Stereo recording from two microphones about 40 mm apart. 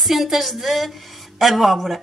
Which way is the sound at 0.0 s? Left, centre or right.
Centre.